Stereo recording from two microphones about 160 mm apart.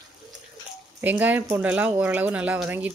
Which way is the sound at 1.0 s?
10° right (ahead or behind).